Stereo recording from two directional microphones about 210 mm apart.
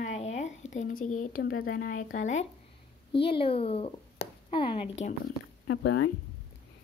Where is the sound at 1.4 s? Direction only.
45° left (ahead or behind).